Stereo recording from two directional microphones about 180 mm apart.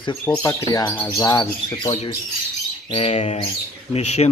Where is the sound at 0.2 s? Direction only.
15° left (ahead or behind).